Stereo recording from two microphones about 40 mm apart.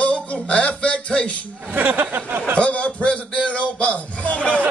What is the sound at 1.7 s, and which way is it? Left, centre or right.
Speech, right.